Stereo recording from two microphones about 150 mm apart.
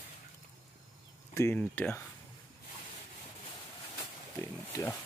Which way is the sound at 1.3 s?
15° left (ahead or behind).